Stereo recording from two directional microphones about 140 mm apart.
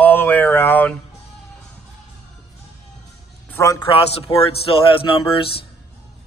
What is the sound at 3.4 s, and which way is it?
Speech, 20° left (ahead or behind).